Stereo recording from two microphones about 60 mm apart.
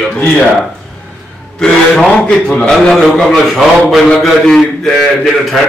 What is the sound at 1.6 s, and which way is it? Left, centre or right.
A man's voice, centre.